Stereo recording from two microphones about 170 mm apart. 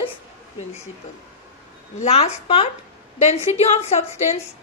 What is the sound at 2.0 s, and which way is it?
Speech, 40° left (ahead or behind).